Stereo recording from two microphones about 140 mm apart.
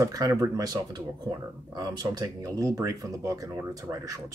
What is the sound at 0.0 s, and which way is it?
Speech, 20° right (ahead or behind).